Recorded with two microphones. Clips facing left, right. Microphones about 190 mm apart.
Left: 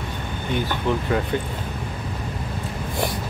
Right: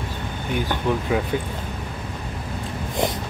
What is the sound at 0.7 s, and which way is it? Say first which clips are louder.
Speech: right 2 dB; 15° right (ahead or behind).